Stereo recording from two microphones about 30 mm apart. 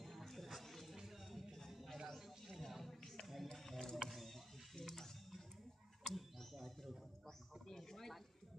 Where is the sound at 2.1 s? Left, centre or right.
Centre.